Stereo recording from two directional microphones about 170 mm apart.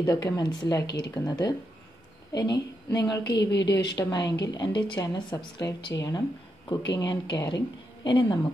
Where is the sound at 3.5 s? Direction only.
90° left.